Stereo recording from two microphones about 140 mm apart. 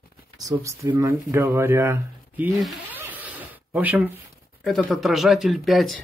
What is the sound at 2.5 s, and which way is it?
Speech, centre (ahead or behind).